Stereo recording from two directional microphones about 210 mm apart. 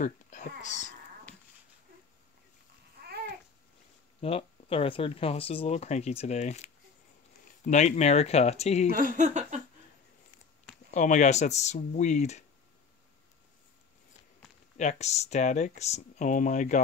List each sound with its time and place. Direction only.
0.0 s speech: 35° left (ahead or behind)
4.2 s speech: 25° left (ahead or behind)
8.9 s speech: 40° right (ahead or behind)
10.9 s speech: 35° left (ahead or behind)
14.8 s speech: 30° left (ahead or behind)